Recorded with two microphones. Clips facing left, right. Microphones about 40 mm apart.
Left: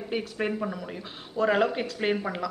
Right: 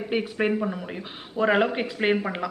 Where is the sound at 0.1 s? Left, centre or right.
Right.